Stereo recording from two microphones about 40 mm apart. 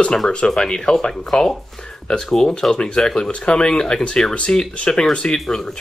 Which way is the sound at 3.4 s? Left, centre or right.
Left.